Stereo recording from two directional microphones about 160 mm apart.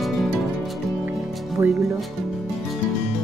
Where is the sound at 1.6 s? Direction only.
15° right (ahead or behind).